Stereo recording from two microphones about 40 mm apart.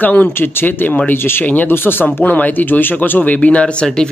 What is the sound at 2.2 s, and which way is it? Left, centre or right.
Speech, left.